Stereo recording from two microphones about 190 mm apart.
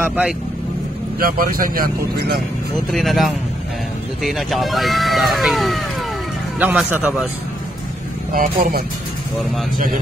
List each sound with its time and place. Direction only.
0.0 s speech: 10° right (ahead or behind)
1.2 s speech: 50° right (ahead or behind)
2.9 s a man's voice: centre (ahead or behind)
8.3 s speech: 50° right (ahead or behind)